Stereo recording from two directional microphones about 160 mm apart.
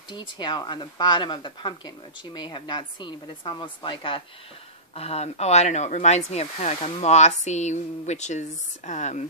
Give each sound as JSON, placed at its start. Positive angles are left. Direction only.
{"t": 0.1, "sound": "a woman's voice", "side_deg": 30}